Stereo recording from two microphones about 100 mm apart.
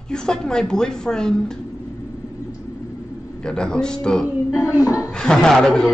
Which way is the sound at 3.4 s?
5° left (ahead or behind).